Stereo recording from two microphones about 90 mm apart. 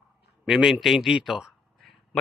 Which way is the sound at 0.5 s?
5° right (ahead or behind).